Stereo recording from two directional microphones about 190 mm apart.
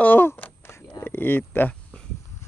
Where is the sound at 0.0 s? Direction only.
10° left (ahead or behind).